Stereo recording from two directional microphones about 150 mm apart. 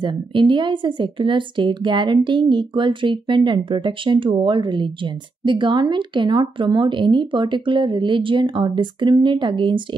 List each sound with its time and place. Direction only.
0.0 s speech: 30° right (ahead or behind)